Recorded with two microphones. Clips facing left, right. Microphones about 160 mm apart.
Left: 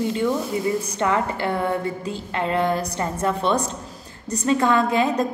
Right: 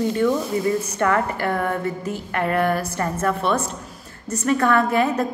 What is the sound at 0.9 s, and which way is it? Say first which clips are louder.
A woman's voice: right 1 dB; 20° left (ahead or behind).